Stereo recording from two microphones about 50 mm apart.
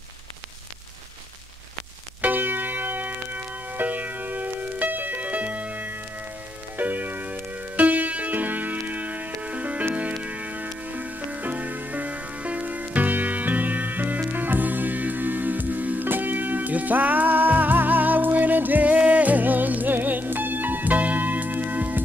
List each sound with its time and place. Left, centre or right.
2.2 s church bell: right
6.8 s music: right